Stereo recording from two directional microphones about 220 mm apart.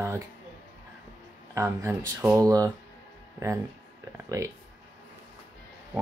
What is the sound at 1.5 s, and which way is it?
Speech, 10° right (ahead or behind).